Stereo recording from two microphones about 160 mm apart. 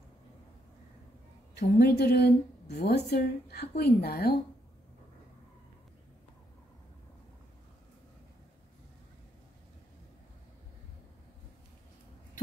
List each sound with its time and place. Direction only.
1.6 s a woman's voice: 85° left